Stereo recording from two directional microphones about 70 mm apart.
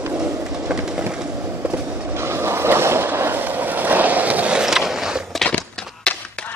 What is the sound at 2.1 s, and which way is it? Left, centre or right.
Boat, right.